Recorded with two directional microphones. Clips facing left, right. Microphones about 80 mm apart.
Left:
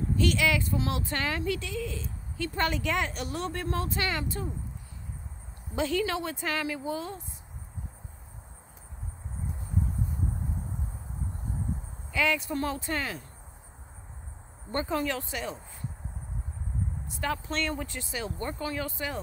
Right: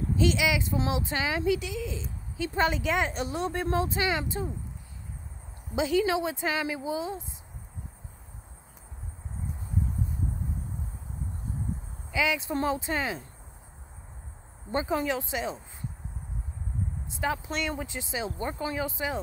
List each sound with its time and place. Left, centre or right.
0.2 s speech: centre
5.8 s speech: centre
12.1 s speech: centre
14.7 s speech: centre
17.2 s speech: centre